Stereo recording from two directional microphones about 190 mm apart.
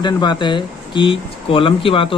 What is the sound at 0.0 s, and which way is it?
Speech, 25° left (ahead or behind).